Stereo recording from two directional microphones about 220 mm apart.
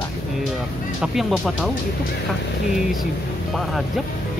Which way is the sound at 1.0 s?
Centre (ahead or behind).